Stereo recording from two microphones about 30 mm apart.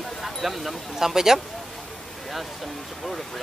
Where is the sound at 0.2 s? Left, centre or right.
Centre.